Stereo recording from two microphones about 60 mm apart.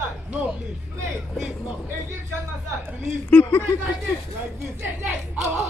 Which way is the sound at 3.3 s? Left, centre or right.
Left.